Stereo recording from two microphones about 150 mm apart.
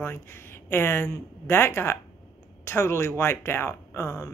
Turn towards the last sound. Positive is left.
turn(degrees=20)  # may be behind; listen again after turning